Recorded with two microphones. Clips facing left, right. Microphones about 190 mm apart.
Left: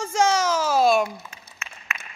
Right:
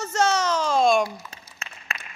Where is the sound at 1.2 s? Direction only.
35° right (ahead or behind).